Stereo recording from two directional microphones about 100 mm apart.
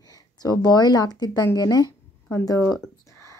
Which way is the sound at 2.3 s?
30° left (ahead or behind).